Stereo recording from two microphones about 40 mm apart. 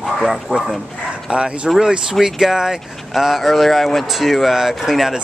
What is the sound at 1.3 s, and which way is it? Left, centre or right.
Speech, right.